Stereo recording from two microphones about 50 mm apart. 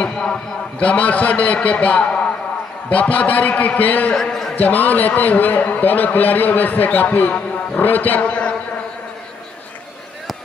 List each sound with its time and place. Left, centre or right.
0.0 s a man's voice: left
4.1 s a man's voice: centre
4.6 s a man's voice: left